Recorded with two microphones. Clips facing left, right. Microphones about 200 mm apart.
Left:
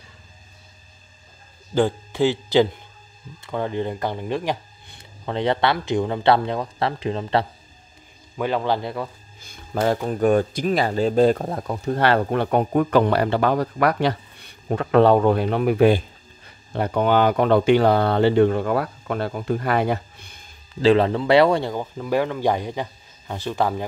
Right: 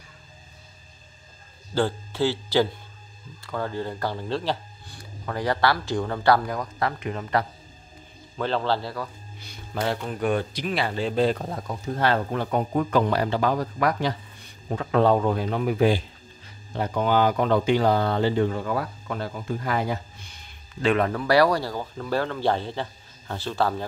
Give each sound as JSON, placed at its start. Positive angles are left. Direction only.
{"t": 1.7, "sound": "a man's voice", "side_deg": 15}
{"t": 8.4, "sound": "speech", "side_deg": 15}
{"t": 9.4, "sound": "speech", "side_deg": 50}
{"t": 20.8, "sound": "speech", "side_deg": 30}